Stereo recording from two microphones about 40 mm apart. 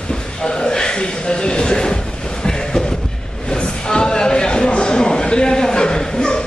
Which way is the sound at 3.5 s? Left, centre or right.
Centre.